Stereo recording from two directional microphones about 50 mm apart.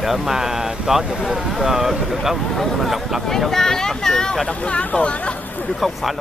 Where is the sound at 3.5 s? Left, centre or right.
Centre.